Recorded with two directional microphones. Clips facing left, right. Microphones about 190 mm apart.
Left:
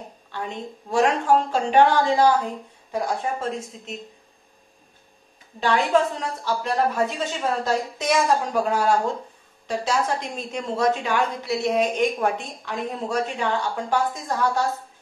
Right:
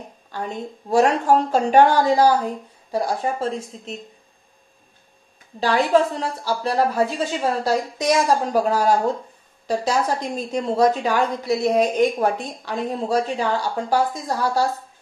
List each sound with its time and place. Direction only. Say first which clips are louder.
0.3 s a woman's voice: right 3 dB; 40° right (ahead or behind)
5.6 s a woman's voice: right 2 dB; 35° right (ahead or behind)